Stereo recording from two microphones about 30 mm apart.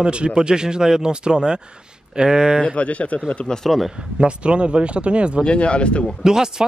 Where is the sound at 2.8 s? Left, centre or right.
Left.